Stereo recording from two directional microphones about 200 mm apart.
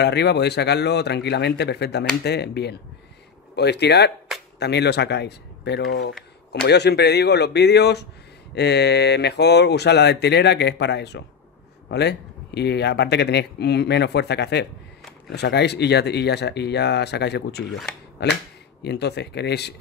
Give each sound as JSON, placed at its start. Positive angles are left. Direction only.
{"t": 0.0, "sound": "speech", "side_deg": 55}
{"t": 17.6, "sound": "speech", "side_deg": 0}
{"t": 18.2, "sound": "speech", "side_deg": 55}